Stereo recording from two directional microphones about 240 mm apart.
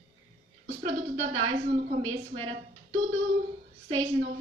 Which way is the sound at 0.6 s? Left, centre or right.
Right.